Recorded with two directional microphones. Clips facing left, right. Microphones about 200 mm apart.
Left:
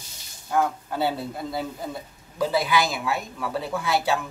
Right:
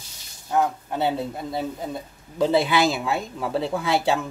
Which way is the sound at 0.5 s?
20° right (ahead or behind).